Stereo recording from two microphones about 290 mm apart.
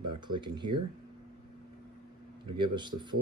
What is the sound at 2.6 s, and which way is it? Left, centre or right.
Speech, centre.